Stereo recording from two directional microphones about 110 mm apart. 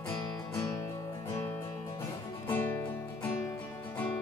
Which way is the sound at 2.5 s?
15° left (ahead or behind).